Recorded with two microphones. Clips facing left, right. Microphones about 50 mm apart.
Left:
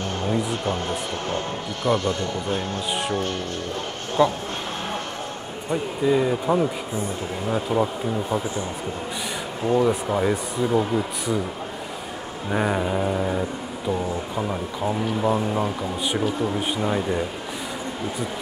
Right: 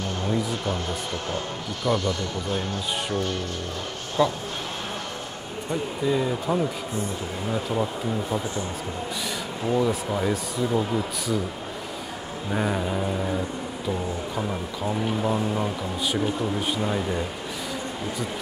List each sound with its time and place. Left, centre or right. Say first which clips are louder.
1.9 s a man's voice: left 2 dB; left
4.2 s speech: left 3 dB; centre
5.7 s speech: left 4 dB; centre
9.7 s speech: left 3 dB; centre
12.4 s speech: left 3 dB; centre